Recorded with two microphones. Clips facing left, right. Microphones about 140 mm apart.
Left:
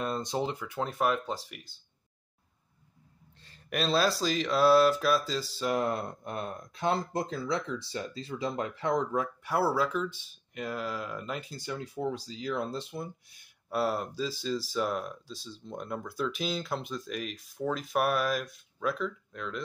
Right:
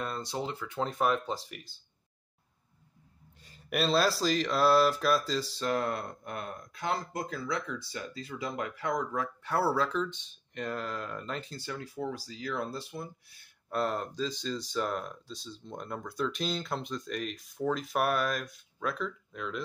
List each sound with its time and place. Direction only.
0.0 s speech: 20° left (ahead or behind); by 1.8 s centre (ahead or behind)
3.4 s speech: 5° right (ahead or behind)
5.7 s speech: 20° left (ahead or behind)
13.7 s speech: 5° left (ahead or behind)